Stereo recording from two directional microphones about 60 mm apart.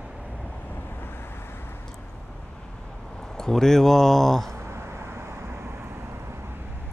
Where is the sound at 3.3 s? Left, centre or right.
Centre.